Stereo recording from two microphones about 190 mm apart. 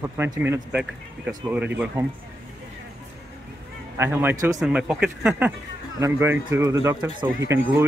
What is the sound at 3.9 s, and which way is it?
Speech, 10° right (ahead or behind).